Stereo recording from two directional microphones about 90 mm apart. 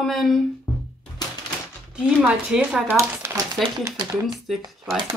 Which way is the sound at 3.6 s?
Centre (ahead or behind).